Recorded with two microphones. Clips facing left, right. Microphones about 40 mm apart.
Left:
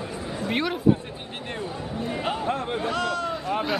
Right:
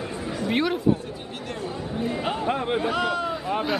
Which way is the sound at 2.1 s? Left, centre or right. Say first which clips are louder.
Left 1 dB; centre.